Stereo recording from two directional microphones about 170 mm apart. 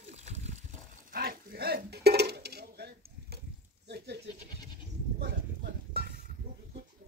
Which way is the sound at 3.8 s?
85° right.